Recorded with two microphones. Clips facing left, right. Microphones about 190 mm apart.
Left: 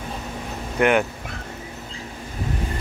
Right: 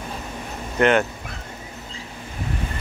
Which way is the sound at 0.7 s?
10° left (ahead or behind).